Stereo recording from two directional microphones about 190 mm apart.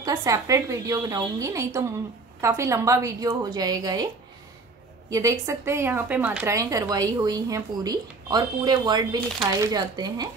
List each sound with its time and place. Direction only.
0.0 s a woman's voice: 15° right (ahead or behind)
5.1 s a woman's voice: 15° right (ahead or behind)